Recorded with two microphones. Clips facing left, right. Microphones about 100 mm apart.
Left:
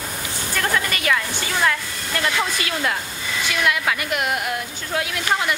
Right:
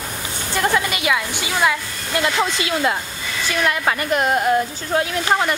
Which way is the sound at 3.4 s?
35° right (ahead or behind).